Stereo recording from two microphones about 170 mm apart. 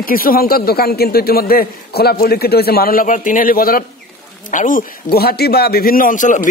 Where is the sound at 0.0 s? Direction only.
60° left (ahead or behind).